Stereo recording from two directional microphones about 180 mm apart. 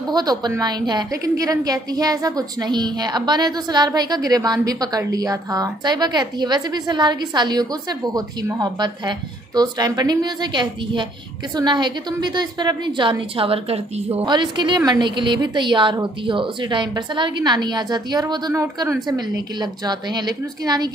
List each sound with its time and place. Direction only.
0.1 s a woman's voice: 20° right (ahead or behind)